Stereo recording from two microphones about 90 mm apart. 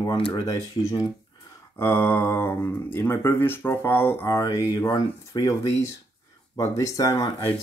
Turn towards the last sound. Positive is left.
turn(degrees=35)  # may be behind; listen again after turning